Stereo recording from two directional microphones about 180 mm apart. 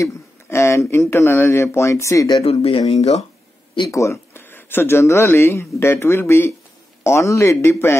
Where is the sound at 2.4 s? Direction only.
35° left (ahead or behind).